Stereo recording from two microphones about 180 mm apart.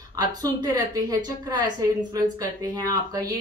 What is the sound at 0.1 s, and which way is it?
A woman's voice, 20° right (ahead or behind).